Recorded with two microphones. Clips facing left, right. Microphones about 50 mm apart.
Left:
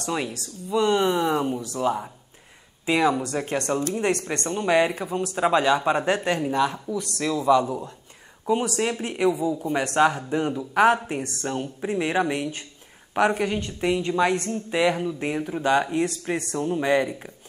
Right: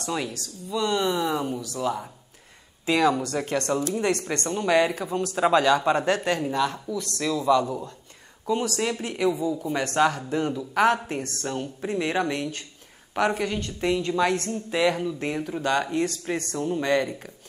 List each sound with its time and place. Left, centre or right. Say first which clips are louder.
0.1 s speech: left 2 dB; left